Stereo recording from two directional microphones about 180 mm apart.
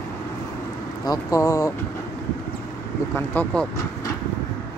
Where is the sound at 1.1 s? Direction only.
20° left (ahead or behind).